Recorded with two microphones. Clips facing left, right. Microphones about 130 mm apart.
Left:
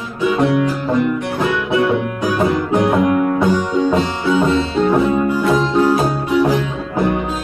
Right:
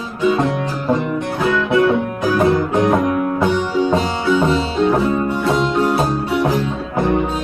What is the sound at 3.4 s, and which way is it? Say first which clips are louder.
Sitar: left 1 dB; centre (ahead or behind).